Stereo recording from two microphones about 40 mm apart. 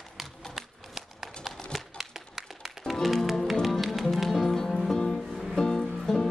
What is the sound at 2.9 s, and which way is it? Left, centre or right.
Music, centre.